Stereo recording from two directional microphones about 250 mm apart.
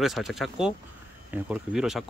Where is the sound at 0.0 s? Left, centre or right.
Centre.